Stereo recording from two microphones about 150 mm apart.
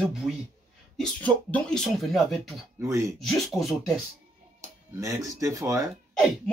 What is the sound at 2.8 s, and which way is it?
Speech, 20° right (ahead or behind).